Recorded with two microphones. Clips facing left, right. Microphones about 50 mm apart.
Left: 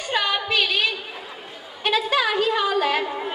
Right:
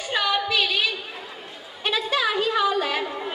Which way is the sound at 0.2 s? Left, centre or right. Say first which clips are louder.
Right 2 dB; centre.